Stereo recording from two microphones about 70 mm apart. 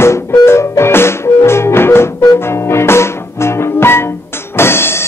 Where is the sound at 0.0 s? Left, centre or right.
Left.